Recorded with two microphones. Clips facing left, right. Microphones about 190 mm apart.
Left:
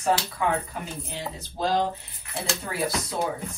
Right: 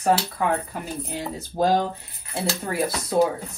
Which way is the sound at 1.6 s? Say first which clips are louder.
Right 4 dB; 55° right (ahead or behind).